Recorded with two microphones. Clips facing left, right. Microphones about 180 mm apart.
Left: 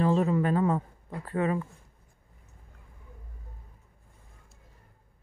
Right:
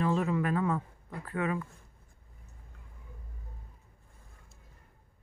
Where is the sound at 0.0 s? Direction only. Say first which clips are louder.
Left 4 dB; 35° left (ahead or behind).